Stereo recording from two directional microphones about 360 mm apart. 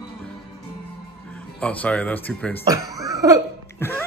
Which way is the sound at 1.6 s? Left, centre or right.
Centre.